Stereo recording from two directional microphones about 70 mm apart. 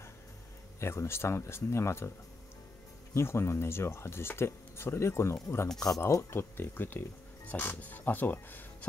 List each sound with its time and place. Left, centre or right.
0.7 s speech: left
3.2 s speech: left
5.8 s speech: left
6.3 s speech: left